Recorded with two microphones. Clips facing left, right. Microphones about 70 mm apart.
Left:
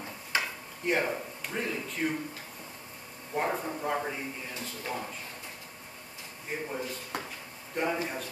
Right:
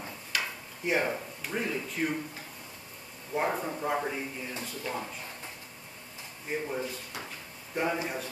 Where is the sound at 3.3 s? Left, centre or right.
Centre.